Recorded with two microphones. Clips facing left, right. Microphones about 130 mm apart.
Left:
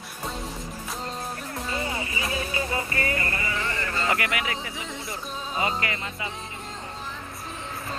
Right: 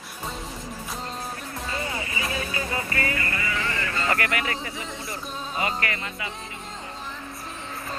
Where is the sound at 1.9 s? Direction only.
25° left (ahead or behind).